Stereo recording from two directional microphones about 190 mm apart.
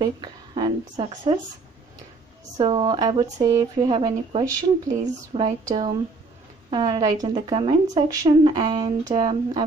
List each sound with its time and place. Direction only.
0.0 s speech: 20° right (ahead or behind)
2.5 s speech: 25° right (ahead or behind)